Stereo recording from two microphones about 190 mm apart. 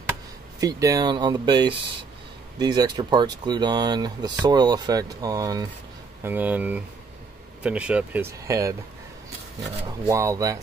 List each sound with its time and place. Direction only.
0.6 s speech: 20° right (ahead or behind)
9.8 s speech: 15° right (ahead or behind)